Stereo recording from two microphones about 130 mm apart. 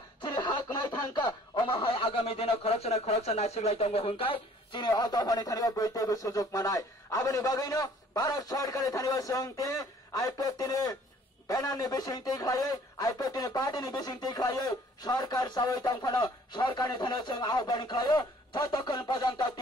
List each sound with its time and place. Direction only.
0.2 s speech: 35° left (ahead or behind)